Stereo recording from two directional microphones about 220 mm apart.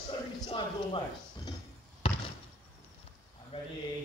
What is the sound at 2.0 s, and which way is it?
Basketball bounce, 25° left (ahead or behind).